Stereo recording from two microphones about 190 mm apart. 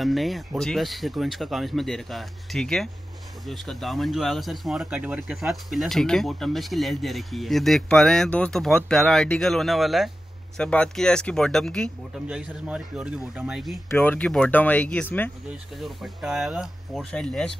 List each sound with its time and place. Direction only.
0.0 s speech: centre (ahead or behind)
15.8 s speech: centre (ahead or behind)